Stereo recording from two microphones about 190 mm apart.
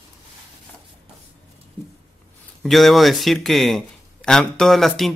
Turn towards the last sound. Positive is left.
turn(degrees=0)  # may be behind; listen again after turning